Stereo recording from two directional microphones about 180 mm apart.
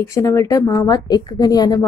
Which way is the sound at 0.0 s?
15° left (ahead or behind).